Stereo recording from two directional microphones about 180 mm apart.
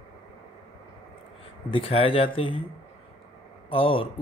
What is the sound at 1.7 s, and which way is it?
Speech, 30° left (ahead or behind).